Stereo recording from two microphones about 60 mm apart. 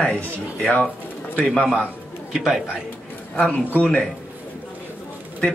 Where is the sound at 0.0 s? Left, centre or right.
Centre.